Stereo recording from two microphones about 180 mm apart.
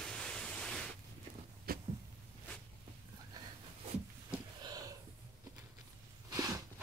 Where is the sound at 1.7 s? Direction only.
55° right (ahead or behind).